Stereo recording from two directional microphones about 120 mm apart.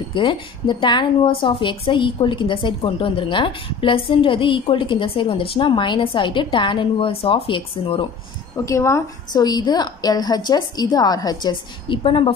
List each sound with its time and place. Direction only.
0.1 s speech: 40° left (ahead or behind)
8.6 s a woman's voice: 25° left (ahead or behind); by 12.2 s 45° left (ahead or behind)